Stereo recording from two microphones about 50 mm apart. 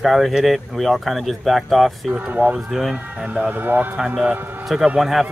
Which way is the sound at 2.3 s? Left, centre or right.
Right.